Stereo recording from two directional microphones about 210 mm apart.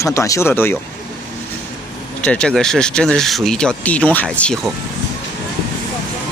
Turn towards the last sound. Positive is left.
turn(degrees=5)  # may be behind; listen again after turning